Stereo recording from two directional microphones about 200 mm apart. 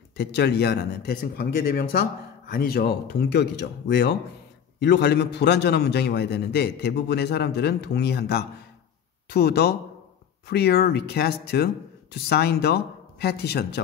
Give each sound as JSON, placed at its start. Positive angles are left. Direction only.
{"t": 0.2, "sound": "a man's voice", "side_deg": 55}